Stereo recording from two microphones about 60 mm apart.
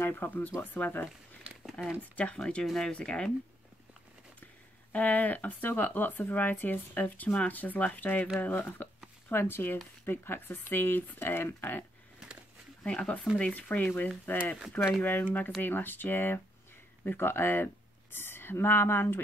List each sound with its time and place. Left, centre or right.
0.0 s speech: left
1.4 s crumpling: centre
2.1 s speech: centre
2.6 s speech: centre
2.9 s speech: centre
4.9 s speech: left
12.8 s speech: centre
15.6 s speech: left